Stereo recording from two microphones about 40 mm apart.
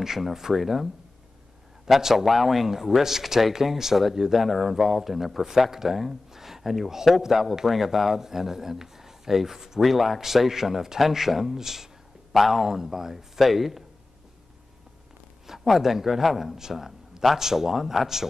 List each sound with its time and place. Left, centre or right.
0.0 s a man's voice: centre
2.0 s a man's voice: centre
15.4 s a man's voice: centre